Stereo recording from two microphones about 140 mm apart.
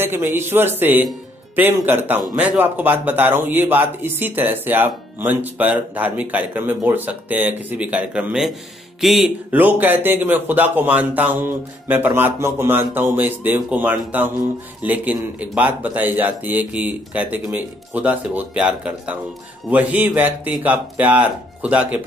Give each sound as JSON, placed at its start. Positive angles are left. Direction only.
{"t": 0.0, "sound": "speech", "side_deg": -15}